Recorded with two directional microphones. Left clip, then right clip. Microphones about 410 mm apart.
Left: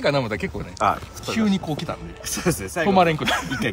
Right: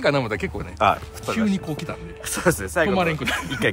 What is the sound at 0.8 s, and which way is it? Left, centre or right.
Speech, right.